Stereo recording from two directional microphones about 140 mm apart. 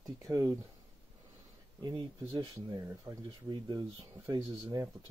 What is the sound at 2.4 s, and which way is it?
Speech, 25° right (ahead or behind).